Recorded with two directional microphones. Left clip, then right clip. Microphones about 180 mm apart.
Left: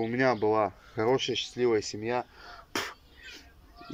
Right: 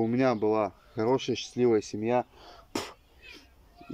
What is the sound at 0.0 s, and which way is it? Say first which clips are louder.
Speech: even; 20° right (ahead or behind).